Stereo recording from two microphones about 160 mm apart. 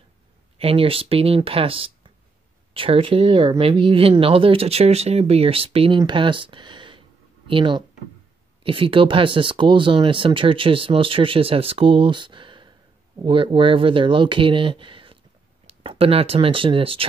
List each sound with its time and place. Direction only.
0.6 s speech: 35° right (ahead or behind)